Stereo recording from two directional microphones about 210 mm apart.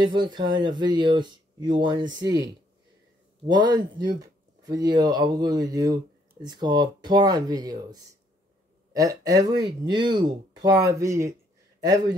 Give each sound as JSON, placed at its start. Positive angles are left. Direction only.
{"t": 0.0, "sound": "speech", "side_deg": -20}
{"t": 3.4, "sound": "speech", "side_deg": -20}